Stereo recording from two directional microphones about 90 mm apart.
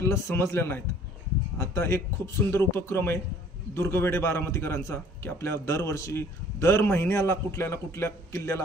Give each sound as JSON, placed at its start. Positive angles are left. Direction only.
{"t": 0.0, "sound": "a man's voice", "side_deg": 30}